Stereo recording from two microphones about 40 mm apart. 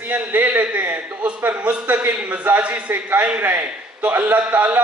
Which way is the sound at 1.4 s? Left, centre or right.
Right.